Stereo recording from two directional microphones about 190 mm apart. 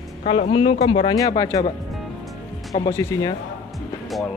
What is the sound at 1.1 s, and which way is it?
Speech, 20° left (ahead or behind).